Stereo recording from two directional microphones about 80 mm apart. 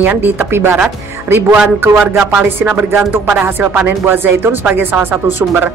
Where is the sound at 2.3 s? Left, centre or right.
Centre.